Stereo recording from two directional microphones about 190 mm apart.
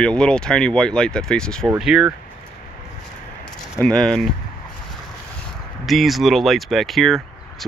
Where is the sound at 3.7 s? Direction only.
5° left (ahead or behind).